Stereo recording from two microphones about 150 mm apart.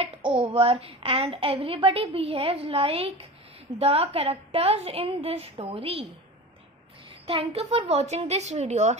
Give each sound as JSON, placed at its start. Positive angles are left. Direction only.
{"t": 0.0, "sound": "a woman's voice", "side_deg": -40}
{"t": 7.2, "sound": "a woman's voice", "side_deg": -40}